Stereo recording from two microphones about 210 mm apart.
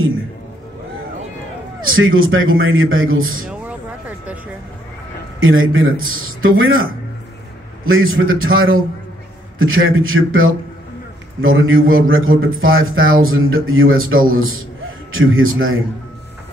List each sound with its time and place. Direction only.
1.8 s a man's voice: 75° right (ahead or behind)
5.4 s a man's voice: 75° right (ahead or behind)